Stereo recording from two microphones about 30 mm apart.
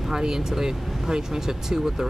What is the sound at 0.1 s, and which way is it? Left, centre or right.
Speech, centre.